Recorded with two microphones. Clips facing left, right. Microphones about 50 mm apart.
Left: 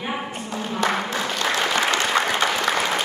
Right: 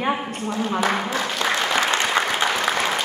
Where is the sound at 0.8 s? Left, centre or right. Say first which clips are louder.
Left 4 dB; centre.